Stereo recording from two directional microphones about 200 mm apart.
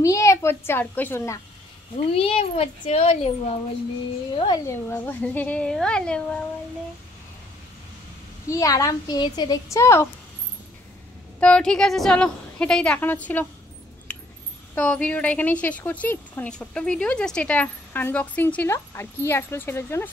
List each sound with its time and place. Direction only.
0.0 s speech: 15° left (ahead or behind)
2.1 s a child's voice: 30° left (ahead or behind)
4.4 s speech: 15° left (ahead or behind)
8.5 s speech: 15° left (ahead or behind)
11.3 s a woman's voice: 5° left (ahead or behind)
14.8 s speech: 5° left (ahead or behind)